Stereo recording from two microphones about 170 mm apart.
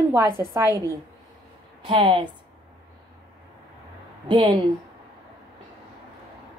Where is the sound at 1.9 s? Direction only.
25° right (ahead or behind).